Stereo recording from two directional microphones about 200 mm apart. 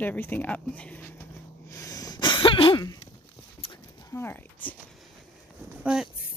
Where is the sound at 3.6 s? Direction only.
25° left (ahead or behind).